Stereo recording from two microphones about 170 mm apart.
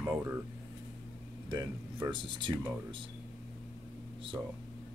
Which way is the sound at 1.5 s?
20° right (ahead or behind).